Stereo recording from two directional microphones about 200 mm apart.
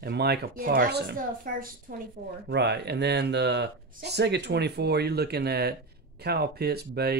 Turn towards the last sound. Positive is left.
turn(degrees=-55)  # may be behind; listen again after turning